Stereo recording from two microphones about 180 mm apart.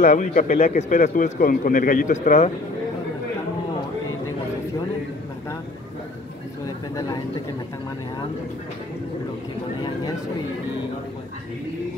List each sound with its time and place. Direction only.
0.0 s speech: 40° left (ahead or behind)